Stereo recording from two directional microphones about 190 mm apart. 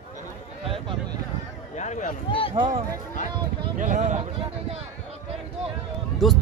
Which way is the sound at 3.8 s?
40° right (ahead or behind).